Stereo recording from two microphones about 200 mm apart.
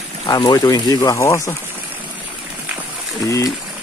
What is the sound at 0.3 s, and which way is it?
Speech, 20° left (ahead or behind).